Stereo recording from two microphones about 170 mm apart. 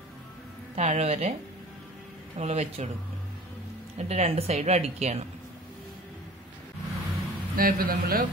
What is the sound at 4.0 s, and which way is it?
Speech, 40° right (ahead or behind).